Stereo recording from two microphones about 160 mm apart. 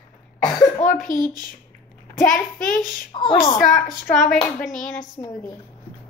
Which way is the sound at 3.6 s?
55° left (ahead or behind).